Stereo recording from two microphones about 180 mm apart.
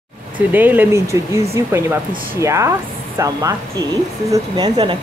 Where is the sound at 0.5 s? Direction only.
10° right (ahead or behind).